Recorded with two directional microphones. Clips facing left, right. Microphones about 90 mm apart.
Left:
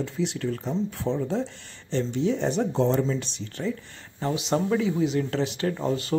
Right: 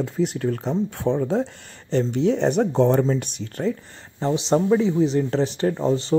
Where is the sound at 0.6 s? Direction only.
60° right (ahead or behind).